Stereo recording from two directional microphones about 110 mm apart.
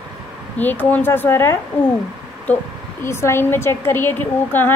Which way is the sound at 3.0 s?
25° left (ahead or behind).